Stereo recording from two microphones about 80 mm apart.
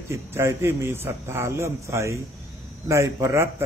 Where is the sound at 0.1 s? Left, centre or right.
Right.